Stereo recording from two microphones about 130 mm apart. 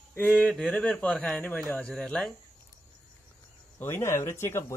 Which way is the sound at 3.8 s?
20° left (ahead or behind).